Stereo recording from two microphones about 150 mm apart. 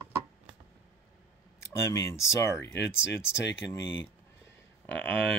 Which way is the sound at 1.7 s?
20° left (ahead or behind).